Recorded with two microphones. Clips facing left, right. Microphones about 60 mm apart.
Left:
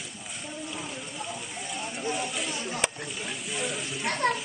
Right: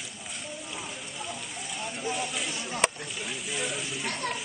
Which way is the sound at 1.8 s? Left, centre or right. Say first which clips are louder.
Left 1 dB; centre.